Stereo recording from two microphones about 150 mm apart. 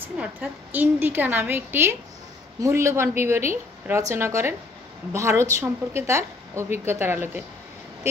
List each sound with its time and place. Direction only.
0.0 s a woman's voice: 10° right (ahead or behind)